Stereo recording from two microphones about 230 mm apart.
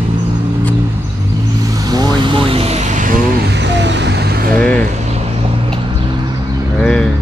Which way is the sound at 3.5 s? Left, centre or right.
Right.